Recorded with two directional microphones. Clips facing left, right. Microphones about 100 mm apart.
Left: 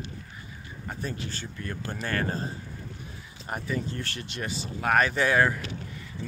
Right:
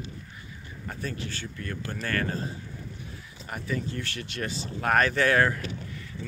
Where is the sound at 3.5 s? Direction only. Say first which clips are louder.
Left 1 dB; 35° left (ahead or behind).